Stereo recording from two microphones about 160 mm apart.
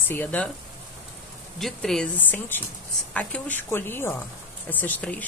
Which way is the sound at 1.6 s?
5° left (ahead or behind).